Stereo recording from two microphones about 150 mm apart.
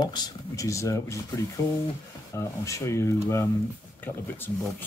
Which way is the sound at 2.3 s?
20° left (ahead or behind).